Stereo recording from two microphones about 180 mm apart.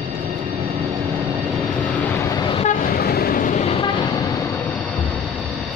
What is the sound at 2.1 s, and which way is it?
Train, 20° left (ahead or behind).